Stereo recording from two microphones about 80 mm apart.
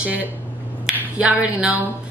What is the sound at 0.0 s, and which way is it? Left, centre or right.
A woman's voice, centre.